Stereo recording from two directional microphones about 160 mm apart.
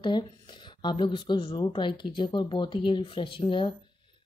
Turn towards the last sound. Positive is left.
turn(degrees=30)  # may be behind; listen again after turning